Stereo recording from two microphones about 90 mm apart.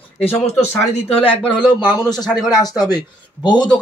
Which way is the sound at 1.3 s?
75° left (ahead or behind).